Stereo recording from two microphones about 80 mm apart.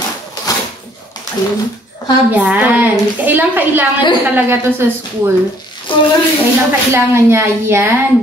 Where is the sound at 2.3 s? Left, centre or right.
Centre.